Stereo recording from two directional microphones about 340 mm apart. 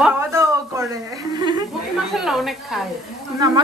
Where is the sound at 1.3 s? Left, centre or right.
Centre.